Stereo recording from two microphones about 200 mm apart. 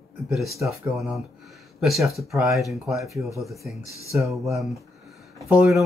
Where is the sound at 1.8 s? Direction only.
Centre (ahead or behind).